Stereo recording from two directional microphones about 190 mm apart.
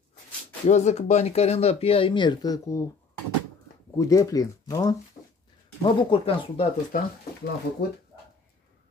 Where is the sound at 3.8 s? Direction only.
20° left (ahead or behind).